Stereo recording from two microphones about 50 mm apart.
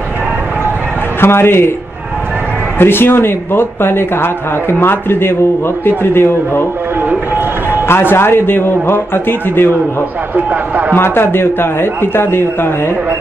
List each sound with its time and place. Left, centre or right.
1.2 s speech: left
2.8 s speech: left
7.1 s vehicle: right
7.9 s speech: left
10.3 s a man's voice: right
11.0 s speech: left